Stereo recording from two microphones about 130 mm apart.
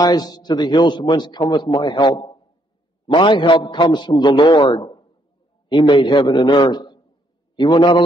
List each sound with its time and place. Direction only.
0.0 s a man's voice: 30° left (ahead or behind)